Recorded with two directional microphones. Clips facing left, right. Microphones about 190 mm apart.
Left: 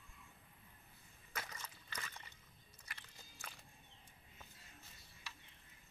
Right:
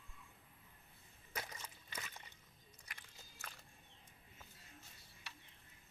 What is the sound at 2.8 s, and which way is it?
Biting, 15° right (ahead or behind).